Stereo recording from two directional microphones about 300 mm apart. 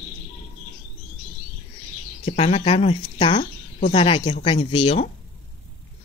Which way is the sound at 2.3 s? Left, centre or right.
Centre.